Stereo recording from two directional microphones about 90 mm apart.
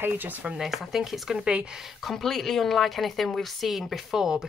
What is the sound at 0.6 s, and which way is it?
Speech, centre (ahead or behind).